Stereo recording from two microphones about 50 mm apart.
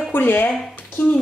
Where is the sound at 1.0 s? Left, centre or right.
Left.